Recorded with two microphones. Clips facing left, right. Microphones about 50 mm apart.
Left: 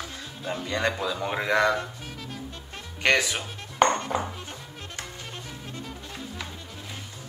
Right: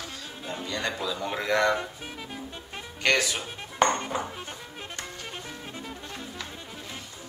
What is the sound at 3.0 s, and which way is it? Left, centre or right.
Speech, centre.